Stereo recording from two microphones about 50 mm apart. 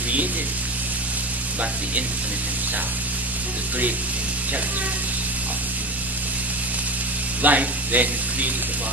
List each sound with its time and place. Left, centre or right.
7.4 s speech: right